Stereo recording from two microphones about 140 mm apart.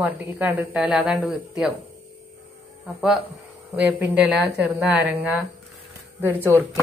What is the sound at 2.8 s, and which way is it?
Speech, 5° right (ahead or behind).